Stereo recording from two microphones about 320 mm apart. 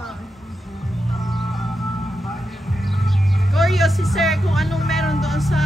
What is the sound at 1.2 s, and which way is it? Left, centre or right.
Music, centre.